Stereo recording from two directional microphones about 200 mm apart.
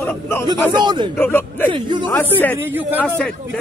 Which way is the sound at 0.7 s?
20° right (ahead or behind).